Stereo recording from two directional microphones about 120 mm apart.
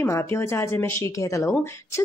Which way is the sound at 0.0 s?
20° left (ahead or behind).